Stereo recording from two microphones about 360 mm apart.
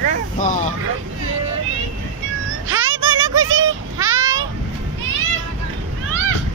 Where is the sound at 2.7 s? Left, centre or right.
Right.